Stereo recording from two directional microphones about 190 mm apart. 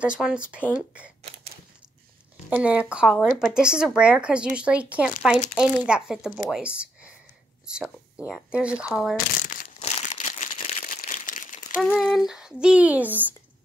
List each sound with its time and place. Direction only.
0.0 s speech: 5° right (ahead or behind)
2.5 s speech: 5° right (ahead or behind)
9.1 s crumpling: 40° left (ahead or behind)
11.8 s speech: centre (ahead or behind)